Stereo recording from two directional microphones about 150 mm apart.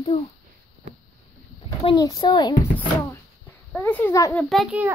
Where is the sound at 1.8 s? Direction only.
35° left (ahead or behind).